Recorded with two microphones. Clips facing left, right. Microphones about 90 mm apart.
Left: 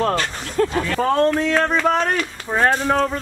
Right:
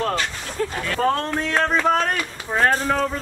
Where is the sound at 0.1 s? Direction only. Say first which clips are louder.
Left 3 dB; 45° left (ahead or behind).